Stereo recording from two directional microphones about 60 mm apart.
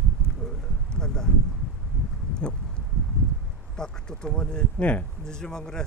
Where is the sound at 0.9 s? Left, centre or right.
Centre.